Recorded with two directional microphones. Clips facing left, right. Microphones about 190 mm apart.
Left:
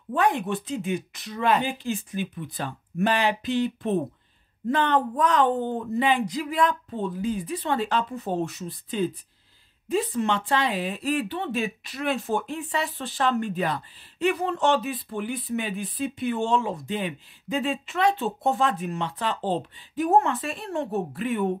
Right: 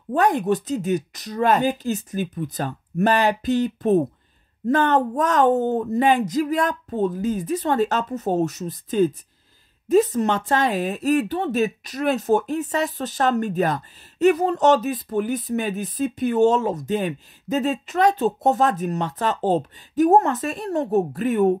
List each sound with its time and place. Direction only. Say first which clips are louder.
0.1 s speech: right 5 dB; 40° right (ahead or behind)